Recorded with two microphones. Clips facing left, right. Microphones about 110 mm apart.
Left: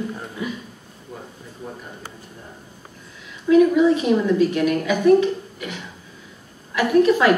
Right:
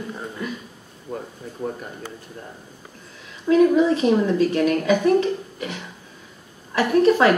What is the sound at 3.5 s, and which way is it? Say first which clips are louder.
Speech: left 3 dB; 30° right (ahead or behind).